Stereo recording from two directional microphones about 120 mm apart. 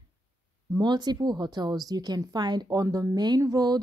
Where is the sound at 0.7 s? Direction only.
35° right (ahead or behind).